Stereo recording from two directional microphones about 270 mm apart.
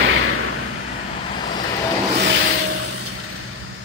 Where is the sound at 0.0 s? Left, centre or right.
Right.